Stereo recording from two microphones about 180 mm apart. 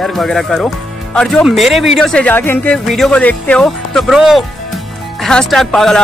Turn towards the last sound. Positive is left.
turn(degrees=0)  # may be behind; listen again after turning